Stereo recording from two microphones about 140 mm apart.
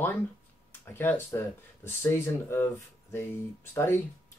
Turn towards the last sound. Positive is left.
turn(degrees=15)  # may be behind; listen again after turning